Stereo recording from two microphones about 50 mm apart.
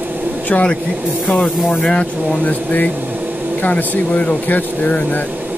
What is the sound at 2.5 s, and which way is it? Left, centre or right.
Speech, left.